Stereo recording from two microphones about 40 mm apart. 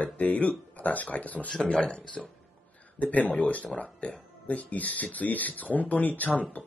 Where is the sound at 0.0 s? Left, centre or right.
Left.